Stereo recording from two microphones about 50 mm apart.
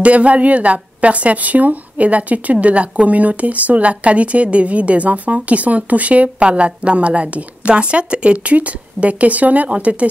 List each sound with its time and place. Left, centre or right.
0.0 s a woman's voice: right